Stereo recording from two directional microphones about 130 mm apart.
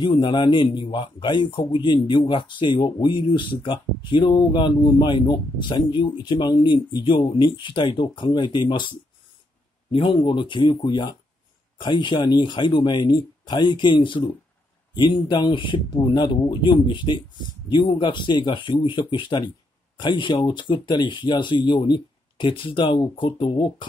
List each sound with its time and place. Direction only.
0.0 s a man's voice: 40° left (ahead or behind)